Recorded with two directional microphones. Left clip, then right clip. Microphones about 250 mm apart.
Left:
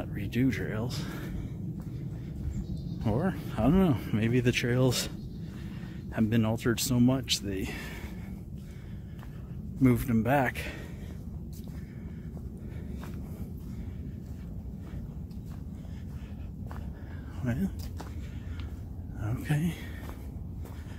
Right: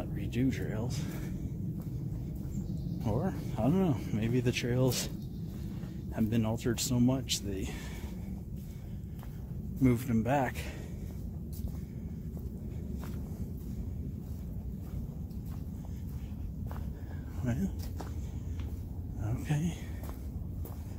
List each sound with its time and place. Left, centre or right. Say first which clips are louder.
0.0 s speech: left 3 dB; left
3.1 s speech: left 4 dB; left
6.1 s speech: left 4 dB; left
9.8 s speech: left 3 dB; left
17.4 s a sound: left 2 dB; centre
19.2 s a sound: left 3 dB; left